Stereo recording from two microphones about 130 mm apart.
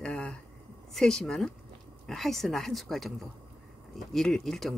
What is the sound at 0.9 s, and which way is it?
Speech, 5° left (ahead or behind).